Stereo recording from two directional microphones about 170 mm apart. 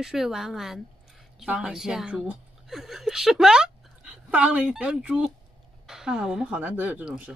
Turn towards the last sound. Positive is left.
turn(degrees=-5)  # may be behind; listen again after turning